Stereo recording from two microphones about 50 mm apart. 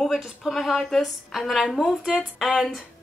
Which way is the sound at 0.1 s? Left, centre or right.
Centre.